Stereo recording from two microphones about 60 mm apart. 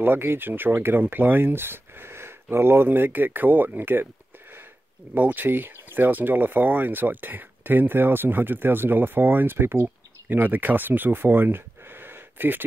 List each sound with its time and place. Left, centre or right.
0.0 s speech: right
5.1 s speech: right